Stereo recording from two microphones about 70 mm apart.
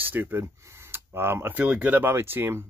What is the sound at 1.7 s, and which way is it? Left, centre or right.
Speech, centre.